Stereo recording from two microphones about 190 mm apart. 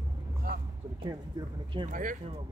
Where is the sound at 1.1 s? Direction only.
20° right (ahead or behind).